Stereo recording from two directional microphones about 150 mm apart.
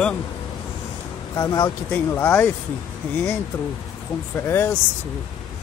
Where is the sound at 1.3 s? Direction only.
25° left (ahead or behind).